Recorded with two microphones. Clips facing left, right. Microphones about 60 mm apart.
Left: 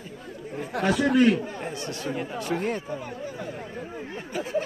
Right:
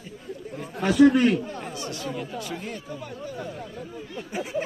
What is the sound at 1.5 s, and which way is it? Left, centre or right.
Chatter, left.